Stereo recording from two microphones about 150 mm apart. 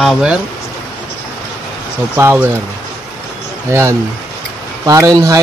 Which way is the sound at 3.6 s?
20° right (ahead or behind).